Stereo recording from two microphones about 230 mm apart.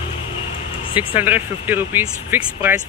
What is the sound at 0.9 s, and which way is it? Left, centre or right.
Speech, left.